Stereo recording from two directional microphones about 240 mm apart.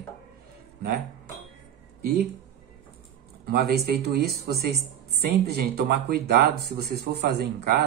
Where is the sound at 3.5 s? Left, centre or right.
Right.